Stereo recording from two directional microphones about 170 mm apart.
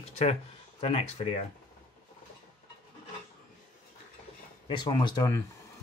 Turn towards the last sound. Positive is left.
turn(degrees=20)  # may be behind; listen again after turning